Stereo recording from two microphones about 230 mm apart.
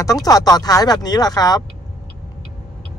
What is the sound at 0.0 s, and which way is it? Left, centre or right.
Speech, centre.